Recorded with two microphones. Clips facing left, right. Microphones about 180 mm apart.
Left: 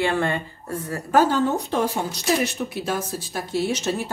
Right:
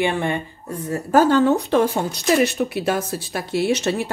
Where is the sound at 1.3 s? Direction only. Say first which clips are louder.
Right 6 dB; 70° right (ahead or behind).